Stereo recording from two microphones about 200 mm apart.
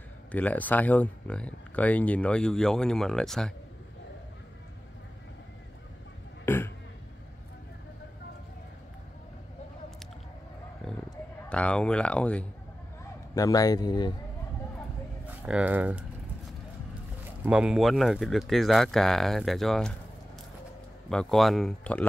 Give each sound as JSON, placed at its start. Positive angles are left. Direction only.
{"t": 0.3, "sound": "speech", "side_deg": 10}
{"t": 6.4, "sound": "burping", "side_deg": 10}
{"t": 11.4, "sound": "speech", "side_deg": 5}
{"t": 13.3, "sound": "a man's voice", "side_deg": 15}
{"t": 15.2, "sound": "speech", "side_deg": -5}
{"t": 17.5, "sound": "speech", "side_deg": -5}
{"t": 21.1, "sound": "speech", "side_deg": 5}